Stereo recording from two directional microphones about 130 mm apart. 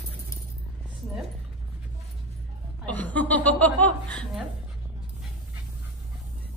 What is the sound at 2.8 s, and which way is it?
Speech, 10° left (ahead or behind).